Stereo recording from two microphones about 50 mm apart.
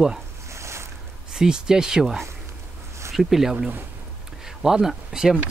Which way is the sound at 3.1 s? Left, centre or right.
Centre.